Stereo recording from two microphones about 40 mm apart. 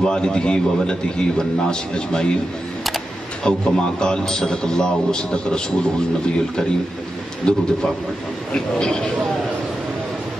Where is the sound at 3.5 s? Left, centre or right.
Left.